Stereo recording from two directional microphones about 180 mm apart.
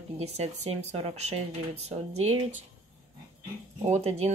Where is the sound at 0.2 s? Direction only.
35° right (ahead or behind).